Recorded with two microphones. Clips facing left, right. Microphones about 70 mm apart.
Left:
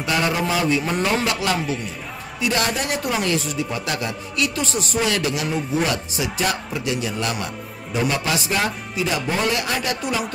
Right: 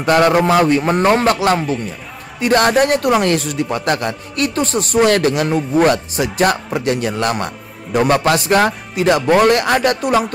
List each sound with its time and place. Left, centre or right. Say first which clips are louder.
0.0 s a man's voice: right 9 dB; right